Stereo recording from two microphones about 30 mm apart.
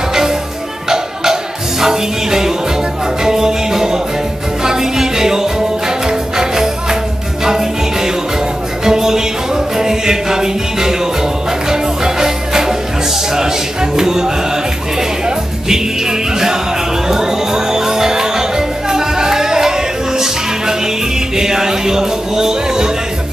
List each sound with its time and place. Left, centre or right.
0.1 s music: centre